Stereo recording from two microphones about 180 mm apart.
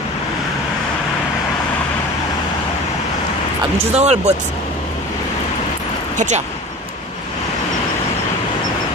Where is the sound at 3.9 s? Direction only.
40° right (ahead or behind).